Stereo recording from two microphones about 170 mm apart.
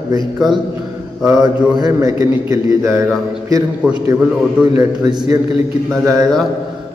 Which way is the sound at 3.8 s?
5° right (ahead or behind).